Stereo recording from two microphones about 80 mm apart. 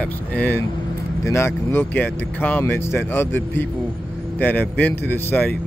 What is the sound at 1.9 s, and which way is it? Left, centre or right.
A man's voice, left.